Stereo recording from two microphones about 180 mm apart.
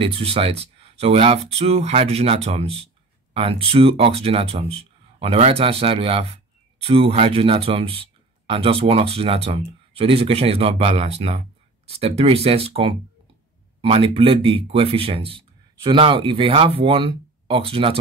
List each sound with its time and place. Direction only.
0.0 s speech: 30° right (ahead or behind)